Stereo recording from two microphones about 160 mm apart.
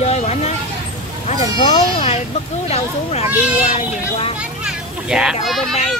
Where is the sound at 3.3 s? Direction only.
10° right (ahead or behind).